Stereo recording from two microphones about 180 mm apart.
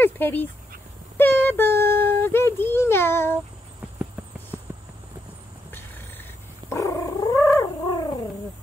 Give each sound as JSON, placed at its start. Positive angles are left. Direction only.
{"t": 0.0, "sound": "speech", "side_deg": 10}
{"t": 4.5, "sound": "a sound", "side_deg": -10}
{"t": 6.7, "sound": "cat", "side_deg": 15}